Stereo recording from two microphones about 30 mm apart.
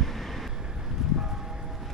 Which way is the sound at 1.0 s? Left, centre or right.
Centre.